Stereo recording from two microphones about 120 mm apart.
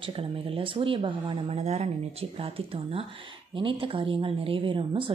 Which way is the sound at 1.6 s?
65° right (ahead or behind).